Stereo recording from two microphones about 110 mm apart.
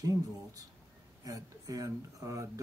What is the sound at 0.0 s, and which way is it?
Speech, 35° right (ahead or behind).